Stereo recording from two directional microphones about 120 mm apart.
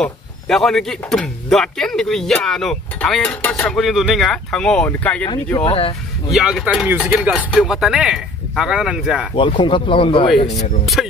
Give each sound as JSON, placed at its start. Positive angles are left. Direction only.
{"t": 0.0, "sound": "speech", "side_deg": 5}
{"t": 5.6, "sound": "speech", "side_deg": 50}
{"t": 6.3, "sound": "speech", "side_deg": -5}
{"t": 9.3, "sound": "speech", "side_deg": 45}
{"t": 11.0, "sound": "speech", "side_deg": 0}